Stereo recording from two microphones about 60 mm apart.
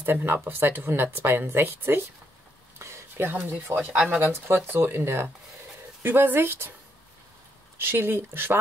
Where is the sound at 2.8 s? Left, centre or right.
Right.